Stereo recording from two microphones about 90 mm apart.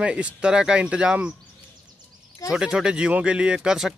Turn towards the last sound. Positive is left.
turn(degrees=-5)  # may be behind; listen again after turning